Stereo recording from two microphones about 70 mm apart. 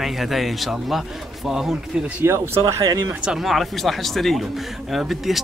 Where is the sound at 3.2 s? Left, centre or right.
Centre.